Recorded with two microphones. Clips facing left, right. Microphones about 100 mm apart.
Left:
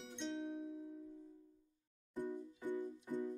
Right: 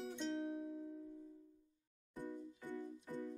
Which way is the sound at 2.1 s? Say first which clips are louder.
Left 4 dB; 15° left (ahead or behind).